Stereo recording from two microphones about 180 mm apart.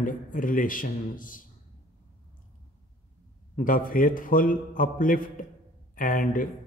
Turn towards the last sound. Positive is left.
turn(degrees=50)  # may be behind; listen again after turning